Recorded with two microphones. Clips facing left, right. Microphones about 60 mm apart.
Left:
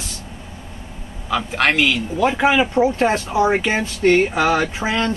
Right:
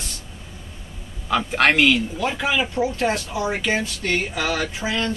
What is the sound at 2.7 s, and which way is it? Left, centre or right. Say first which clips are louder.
Speech: left 5 dB; left.